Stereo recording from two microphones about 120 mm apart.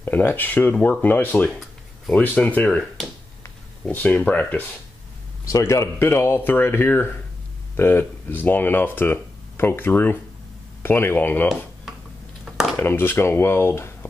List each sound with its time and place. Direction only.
0.0 s speech: 15° left (ahead or behind)
3.8 s speech: 15° left (ahead or behind)
5.4 s speech: 25° left (ahead or behind)
12.7 s speech: 20° left (ahead or behind)